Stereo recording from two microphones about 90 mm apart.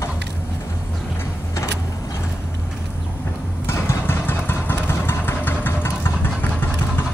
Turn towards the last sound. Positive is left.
turn(degrees=25)  # may be behind; listen again after turning